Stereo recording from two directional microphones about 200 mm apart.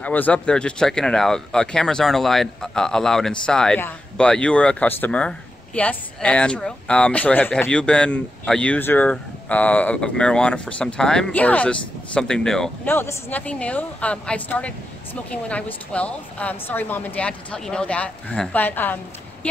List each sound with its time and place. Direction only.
0.0 s a woman's voice: 10° left (ahead or behind)